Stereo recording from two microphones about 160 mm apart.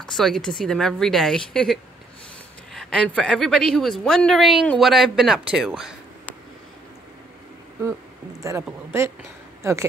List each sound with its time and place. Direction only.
0.0 s a woman's voice: centre (ahead or behind)
8.4 s speech: 20° right (ahead or behind)